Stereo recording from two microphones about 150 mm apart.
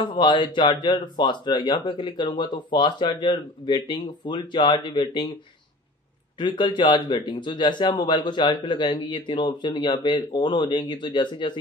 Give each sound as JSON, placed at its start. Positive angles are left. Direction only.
{"t": 0.0, "sound": "speech", "side_deg": 30}
{"t": 6.4, "sound": "speech", "side_deg": 30}